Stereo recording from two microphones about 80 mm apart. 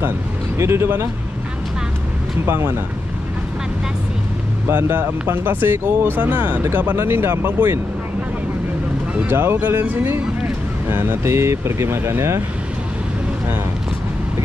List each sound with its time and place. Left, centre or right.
0.6 s speech: right
2.4 s speech: right
4.6 s speech: right
9.3 s speech: right